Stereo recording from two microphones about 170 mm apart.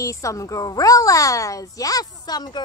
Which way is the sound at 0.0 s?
20° left (ahead or behind).